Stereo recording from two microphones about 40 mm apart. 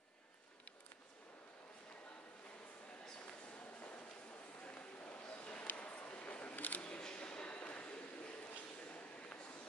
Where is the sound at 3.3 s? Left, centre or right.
Left.